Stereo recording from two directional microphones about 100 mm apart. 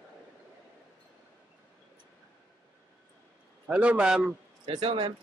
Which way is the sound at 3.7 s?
10° right (ahead or behind).